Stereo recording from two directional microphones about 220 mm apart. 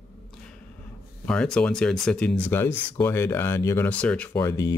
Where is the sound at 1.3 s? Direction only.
5° left (ahead or behind).